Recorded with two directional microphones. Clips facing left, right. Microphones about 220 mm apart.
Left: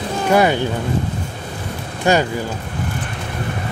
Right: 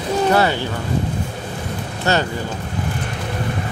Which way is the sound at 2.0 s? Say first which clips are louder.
Left 4 dB; 15° left (ahead or behind).